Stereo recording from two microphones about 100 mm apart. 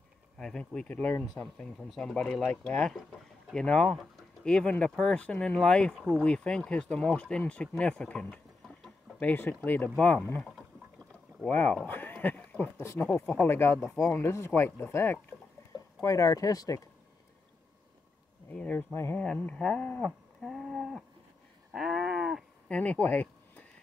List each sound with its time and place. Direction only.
0.4 s speech: 10° left (ahead or behind); by 16.8 s 35° left (ahead or behind)
18.5 s speech: 15° left (ahead or behind)
20.4 s a sound: centre (ahead or behind)
22.7 s speech: 15° left (ahead or behind)